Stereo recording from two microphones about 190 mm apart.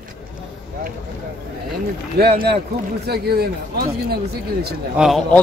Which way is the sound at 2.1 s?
55° right (ahead or behind).